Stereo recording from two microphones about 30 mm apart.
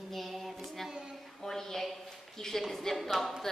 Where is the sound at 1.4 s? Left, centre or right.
Centre.